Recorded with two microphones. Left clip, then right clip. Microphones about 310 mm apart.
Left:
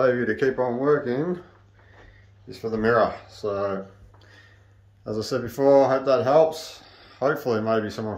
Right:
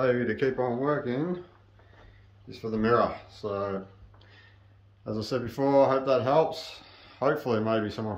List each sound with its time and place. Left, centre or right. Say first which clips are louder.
0.0 s speech: left 5 dB; centre
2.4 s speech: left 5 dB; centre